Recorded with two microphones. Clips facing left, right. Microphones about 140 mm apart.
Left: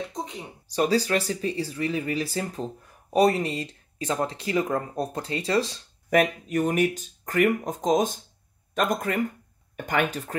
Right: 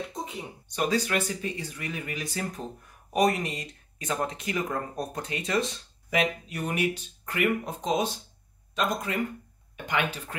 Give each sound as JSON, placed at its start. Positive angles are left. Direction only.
{"t": 0.1, "sound": "a sound", "side_deg": -5}
{"t": 0.7, "sound": "speech", "side_deg": 35}
{"t": 6.0, "sound": "speech", "side_deg": 50}